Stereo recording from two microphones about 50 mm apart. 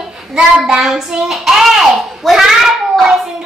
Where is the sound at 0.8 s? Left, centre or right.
Centre.